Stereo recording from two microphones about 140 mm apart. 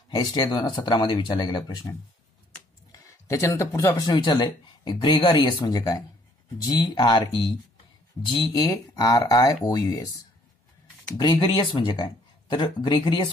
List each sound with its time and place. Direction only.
0.1 s speech: 30° left (ahead or behind)
11.1 s speech: 35° left (ahead or behind)